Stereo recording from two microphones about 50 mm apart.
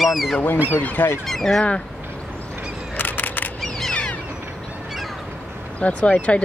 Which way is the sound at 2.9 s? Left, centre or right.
Left.